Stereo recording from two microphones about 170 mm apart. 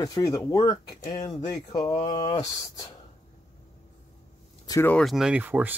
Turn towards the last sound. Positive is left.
turn(degrees=-10)  # may be behind; listen again after turning